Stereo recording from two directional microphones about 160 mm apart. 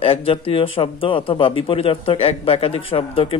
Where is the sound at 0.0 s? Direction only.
35° left (ahead or behind).